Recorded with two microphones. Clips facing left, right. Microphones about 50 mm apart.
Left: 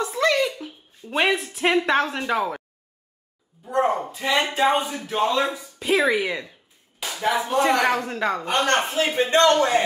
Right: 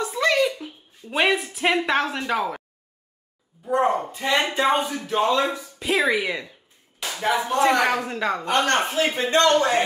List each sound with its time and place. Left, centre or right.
0.0 s a sound: centre
1.1 s speech: centre
3.7 s speech: centre
8.5 s a man's voice: left